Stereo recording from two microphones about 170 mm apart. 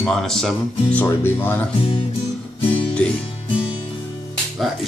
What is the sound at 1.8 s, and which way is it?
Speech, 30° left (ahead or behind).